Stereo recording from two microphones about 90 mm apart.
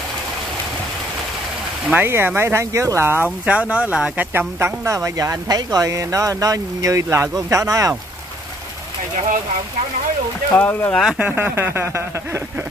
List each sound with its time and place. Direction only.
2.0 s speech: 25° right (ahead or behind)
3.3 s speech: 15° right (ahead or behind)
4.3 s speech: 25° right (ahead or behind)
10.5 s speech: 20° left (ahead or behind)
11.3 s speech: 25° right (ahead or behind)